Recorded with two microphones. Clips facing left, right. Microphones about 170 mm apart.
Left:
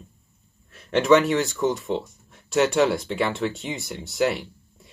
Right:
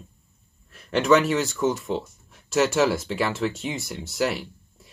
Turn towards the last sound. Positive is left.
turn(degrees=0)  # may be behind; listen again after turning